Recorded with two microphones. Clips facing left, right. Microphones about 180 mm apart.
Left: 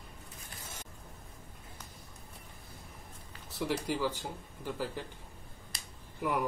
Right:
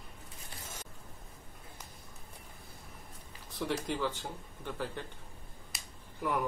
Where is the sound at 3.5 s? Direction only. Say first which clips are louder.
Left 1 dB; 5° left (ahead or behind).